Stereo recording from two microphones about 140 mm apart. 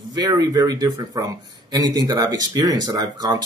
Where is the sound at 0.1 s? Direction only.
25° right (ahead or behind).